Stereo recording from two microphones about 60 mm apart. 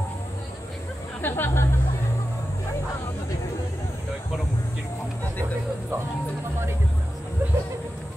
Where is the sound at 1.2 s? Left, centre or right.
Left.